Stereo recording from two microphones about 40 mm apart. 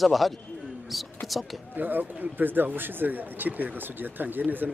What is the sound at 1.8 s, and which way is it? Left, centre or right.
Speech, right.